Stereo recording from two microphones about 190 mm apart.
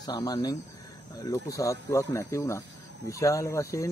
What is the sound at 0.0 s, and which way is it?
Speech, 20° left (ahead or behind).